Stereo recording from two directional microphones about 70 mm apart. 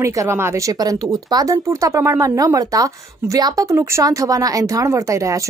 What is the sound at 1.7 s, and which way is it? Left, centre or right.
A woman's voice, right.